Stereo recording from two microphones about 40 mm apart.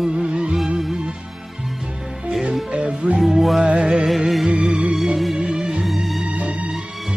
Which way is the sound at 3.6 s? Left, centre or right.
Right.